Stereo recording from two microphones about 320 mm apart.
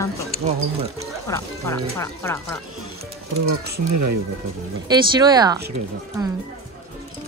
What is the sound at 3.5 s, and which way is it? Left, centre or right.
Speech, right.